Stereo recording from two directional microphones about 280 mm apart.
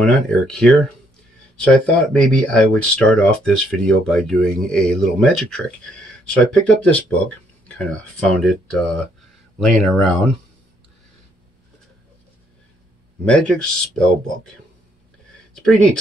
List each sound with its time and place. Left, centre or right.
0.0 s speech: centre
13.2 s speech: centre
15.5 s speech: centre